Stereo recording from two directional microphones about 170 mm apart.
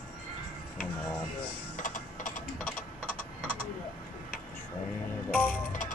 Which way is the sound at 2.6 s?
10° left (ahead or behind).